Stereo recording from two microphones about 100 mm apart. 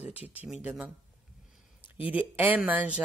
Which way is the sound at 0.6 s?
15° right (ahead or behind).